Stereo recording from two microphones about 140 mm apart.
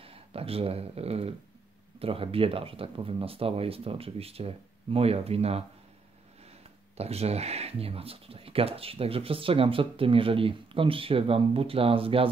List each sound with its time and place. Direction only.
0.0 s speech: 45° right (ahead or behind)
7.0 s speech: 50° right (ahead or behind)